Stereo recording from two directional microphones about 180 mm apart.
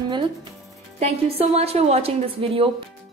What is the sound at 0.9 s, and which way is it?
A woman's voice, 35° right (ahead or behind).